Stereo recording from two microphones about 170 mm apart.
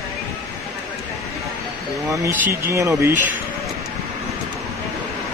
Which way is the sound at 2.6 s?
15° right (ahead or behind).